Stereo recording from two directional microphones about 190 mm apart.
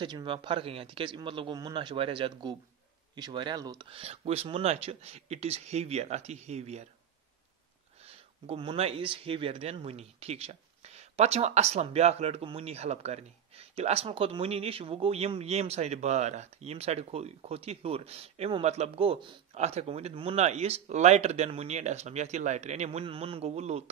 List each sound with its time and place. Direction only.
0.0 s speech: 25° right (ahead or behind)
8.0 s speech: 30° right (ahead or behind)